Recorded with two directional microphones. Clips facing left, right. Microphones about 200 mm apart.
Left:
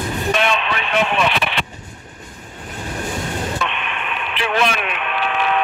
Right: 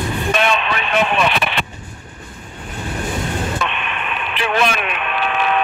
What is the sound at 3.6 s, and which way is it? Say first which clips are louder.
Radio: right 1 dB; 45° right (ahead or behind).